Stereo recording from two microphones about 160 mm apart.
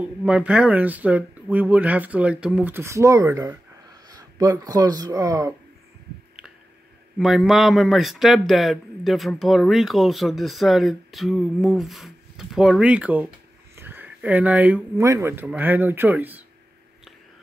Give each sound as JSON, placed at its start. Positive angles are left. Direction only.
{"t": 0.0, "sound": "speech", "side_deg": -5}
{"t": 7.2, "sound": "speech", "side_deg": 0}